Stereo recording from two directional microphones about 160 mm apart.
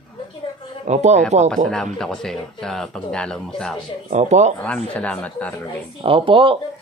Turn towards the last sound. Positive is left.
turn(degrees=-35)  # may be behind; listen again after turning